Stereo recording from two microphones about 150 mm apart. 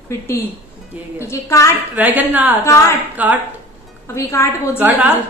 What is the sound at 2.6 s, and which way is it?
Speech, 20° left (ahead or behind).